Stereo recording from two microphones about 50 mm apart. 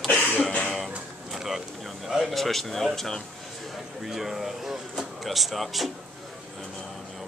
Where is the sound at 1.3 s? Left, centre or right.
Centre.